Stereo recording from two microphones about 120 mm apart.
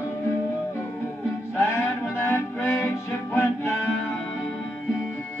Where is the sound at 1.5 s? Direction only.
25° left (ahead or behind).